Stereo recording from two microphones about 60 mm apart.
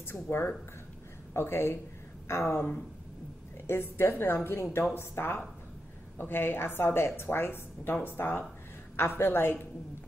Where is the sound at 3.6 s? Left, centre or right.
Left.